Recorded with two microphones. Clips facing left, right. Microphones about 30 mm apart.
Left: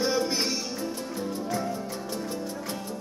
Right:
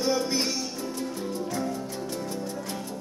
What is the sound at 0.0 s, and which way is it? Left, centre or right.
Music, centre.